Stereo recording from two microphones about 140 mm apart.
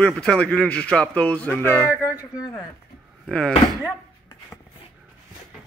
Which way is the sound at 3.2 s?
5° left (ahead or behind).